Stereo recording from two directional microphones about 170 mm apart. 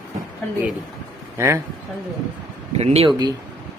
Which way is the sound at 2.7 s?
35° right (ahead or behind).